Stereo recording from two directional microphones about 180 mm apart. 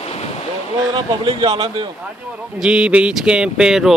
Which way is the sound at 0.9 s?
25° right (ahead or behind).